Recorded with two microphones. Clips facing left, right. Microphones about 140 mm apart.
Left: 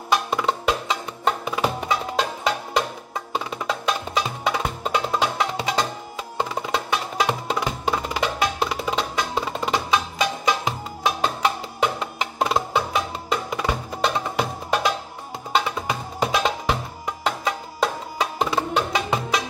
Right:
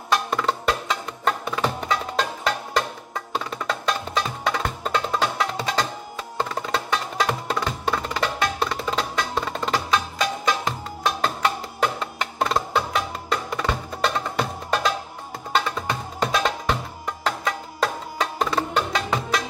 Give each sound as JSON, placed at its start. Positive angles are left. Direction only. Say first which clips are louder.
{"t": 0.1, "sound": "music", "louder": "left 1 dB", "side_deg": 10}